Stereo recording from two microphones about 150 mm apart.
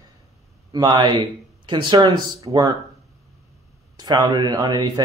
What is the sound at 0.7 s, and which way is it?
Speech, 30° right (ahead or behind).